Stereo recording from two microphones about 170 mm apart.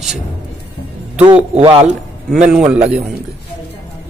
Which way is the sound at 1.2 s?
30° right (ahead or behind).